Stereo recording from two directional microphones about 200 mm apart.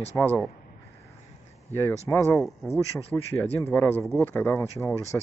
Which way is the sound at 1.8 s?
15° left (ahead or behind).